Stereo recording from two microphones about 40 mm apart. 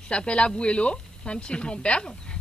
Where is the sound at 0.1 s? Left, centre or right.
Left.